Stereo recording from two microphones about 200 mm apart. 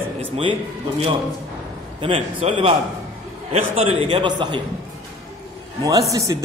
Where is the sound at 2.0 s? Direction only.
25° right (ahead or behind).